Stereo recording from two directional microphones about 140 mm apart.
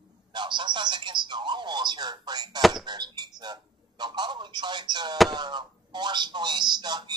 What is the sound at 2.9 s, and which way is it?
Speech, 30° right (ahead or behind).